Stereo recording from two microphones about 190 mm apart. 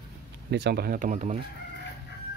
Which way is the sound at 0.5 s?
60° right (ahead or behind).